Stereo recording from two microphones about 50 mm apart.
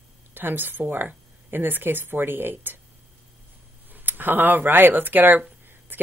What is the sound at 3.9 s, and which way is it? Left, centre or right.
A woman's voice, right.